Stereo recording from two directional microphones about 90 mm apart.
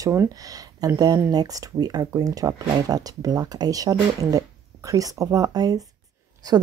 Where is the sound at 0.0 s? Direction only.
30° right (ahead or behind).